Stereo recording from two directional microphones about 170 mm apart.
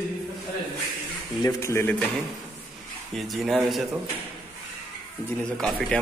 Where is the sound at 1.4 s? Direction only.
15° left (ahead or behind).